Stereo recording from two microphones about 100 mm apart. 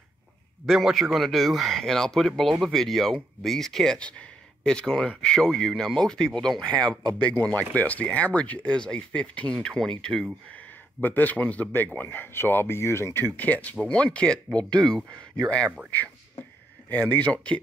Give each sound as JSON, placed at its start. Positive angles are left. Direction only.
{"t": 0.7, "sound": "speech", "side_deg": 0}
{"t": 7.0, "sound": "speech", "side_deg": -50}
{"t": 7.4, "sound": "speech", "side_deg": 15}
{"t": 10.5, "sound": "speech", "side_deg": 15}
{"t": 15.9, "sound": "a sound", "side_deg": 15}
{"t": 16.9, "sound": "speech", "side_deg": 15}